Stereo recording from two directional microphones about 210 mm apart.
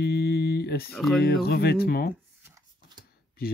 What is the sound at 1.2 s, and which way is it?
Speech, 50° left (ahead or behind).